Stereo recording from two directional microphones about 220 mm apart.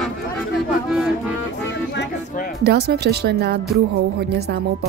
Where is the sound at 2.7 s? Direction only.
50° right (ahead or behind).